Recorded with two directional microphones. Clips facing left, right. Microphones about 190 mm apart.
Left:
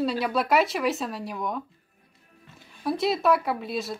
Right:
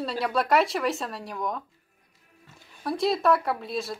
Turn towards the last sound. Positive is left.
turn(degrees=0)  # may be behind; listen again after turning